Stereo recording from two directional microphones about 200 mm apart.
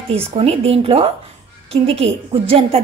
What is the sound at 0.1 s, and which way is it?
A woman's voice, 30° right (ahead or behind).